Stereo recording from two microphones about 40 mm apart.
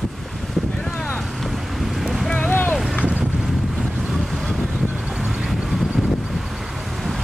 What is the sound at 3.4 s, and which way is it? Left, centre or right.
Boat, centre.